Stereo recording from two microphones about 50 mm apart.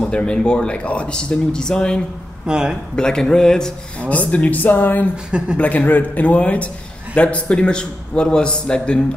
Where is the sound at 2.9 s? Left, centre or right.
Centre.